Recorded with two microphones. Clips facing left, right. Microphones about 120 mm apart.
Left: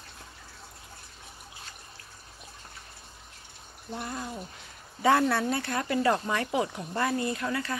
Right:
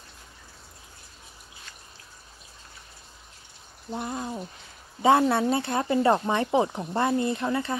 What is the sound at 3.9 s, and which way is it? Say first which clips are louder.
Speech: right 4 dB; 20° right (ahead or behind).